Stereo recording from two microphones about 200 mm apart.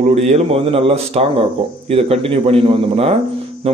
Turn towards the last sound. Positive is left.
turn(degrees=-30)  # may be behind; listen again after turning